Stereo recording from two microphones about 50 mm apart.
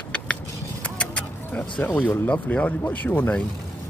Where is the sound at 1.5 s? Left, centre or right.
Left.